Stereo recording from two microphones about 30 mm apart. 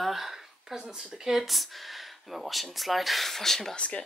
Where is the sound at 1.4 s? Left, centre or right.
Centre.